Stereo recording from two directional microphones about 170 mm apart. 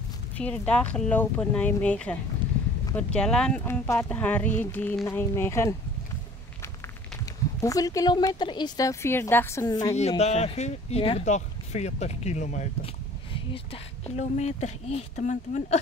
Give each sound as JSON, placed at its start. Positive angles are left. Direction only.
{"t": 0.4, "sound": "speech", "side_deg": 5}
{"t": 7.6, "sound": "a woman's voice", "side_deg": 20}
{"t": 9.9, "sound": "speech", "side_deg": 40}
{"t": 14.0, "sound": "speech", "side_deg": 45}